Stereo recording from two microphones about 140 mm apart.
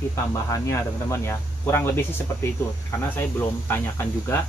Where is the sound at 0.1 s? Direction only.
20° left (ahead or behind).